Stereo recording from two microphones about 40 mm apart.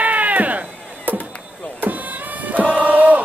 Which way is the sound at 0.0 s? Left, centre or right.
Right.